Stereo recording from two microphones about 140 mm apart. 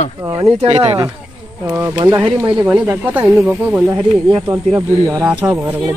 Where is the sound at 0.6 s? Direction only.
50° right (ahead or behind).